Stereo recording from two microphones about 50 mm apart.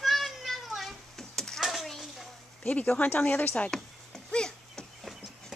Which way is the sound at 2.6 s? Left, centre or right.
Left.